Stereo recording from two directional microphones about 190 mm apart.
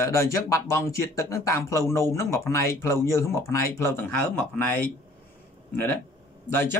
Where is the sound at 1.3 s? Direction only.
15° left (ahead or behind).